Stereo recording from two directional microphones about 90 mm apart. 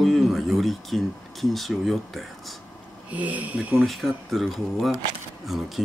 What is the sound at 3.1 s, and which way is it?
Speech, 15° right (ahead or behind).